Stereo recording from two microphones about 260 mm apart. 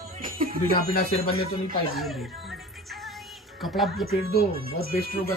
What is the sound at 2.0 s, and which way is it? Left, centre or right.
Music, centre.